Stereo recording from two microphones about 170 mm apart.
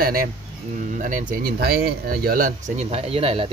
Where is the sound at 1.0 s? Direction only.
50° right (ahead or behind).